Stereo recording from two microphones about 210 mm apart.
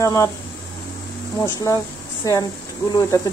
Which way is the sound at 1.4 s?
15° left (ahead or behind).